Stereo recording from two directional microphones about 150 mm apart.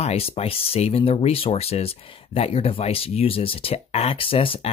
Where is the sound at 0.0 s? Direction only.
40° left (ahead or behind).